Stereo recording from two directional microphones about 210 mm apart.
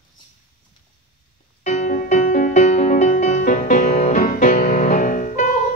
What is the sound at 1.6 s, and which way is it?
Music, 35° left (ahead or behind).